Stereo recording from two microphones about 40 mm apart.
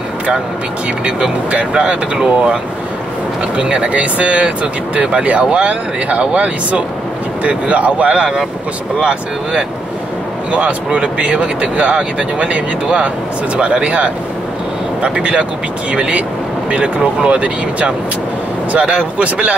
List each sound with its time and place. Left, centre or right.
1.7 s speech: right
3.9 s speech: right